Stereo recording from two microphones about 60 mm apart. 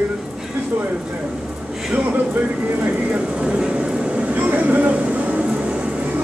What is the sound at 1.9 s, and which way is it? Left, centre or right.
Speech, right.